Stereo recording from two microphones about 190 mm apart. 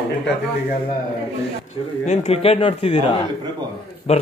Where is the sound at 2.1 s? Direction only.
30° left (ahead or behind).